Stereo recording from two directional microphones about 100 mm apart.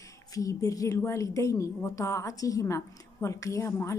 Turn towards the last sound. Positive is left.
turn(degrees=30)  # may be behind; listen again after turning